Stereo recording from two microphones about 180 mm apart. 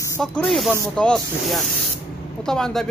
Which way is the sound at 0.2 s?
Centre (ahead or behind).